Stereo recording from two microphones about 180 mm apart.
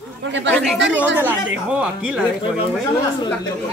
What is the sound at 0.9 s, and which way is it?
A woman's voice, 10° right (ahead or behind).